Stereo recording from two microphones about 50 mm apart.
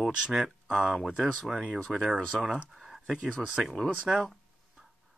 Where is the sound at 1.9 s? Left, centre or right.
Right.